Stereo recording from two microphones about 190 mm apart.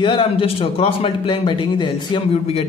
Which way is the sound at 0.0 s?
25° left (ahead or behind).